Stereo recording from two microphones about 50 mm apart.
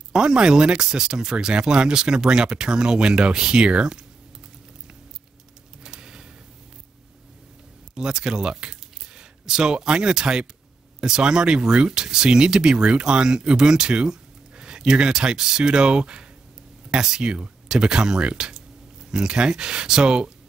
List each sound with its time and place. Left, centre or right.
0.1 s speech: centre
5.9 s a sound: centre
7.9 s speech: centre